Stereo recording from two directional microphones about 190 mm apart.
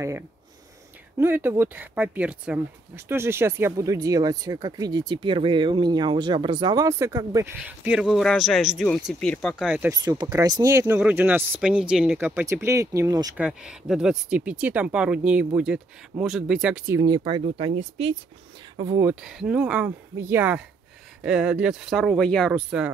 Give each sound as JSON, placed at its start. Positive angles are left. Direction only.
{"t": 1.1, "sound": "speech", "side_deg": -10}
{"t": 7.5, "sound": "speech", "side_deg": -5}
{"t": 9.8, "sound": "speech", "side_deg": -20}
{"t": 13.4, "sound": "speech", "side_deg": -5}
{"t": 17.4, "sound": "speech", "side_deg": -30}
{"t": 18.8, "sound": "speech", "side_deg": -15}
{"t": 19.2, "sound": "speech", "side_deg": -5}